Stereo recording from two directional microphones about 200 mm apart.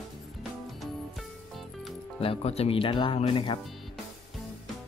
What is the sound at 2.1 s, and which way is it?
Speech, 30° left (ahead or behind).